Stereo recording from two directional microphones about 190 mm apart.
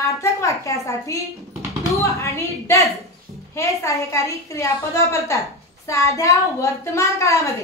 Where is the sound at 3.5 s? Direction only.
15° left (ahead or behind).